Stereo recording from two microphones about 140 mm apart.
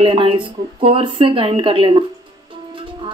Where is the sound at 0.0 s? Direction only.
40° right (ahead or behind).